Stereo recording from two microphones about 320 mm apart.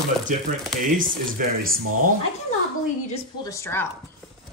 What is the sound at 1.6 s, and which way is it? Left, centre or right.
Speech, right.